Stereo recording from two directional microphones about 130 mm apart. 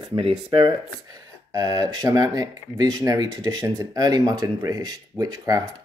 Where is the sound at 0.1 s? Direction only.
40° right (ahead or behind).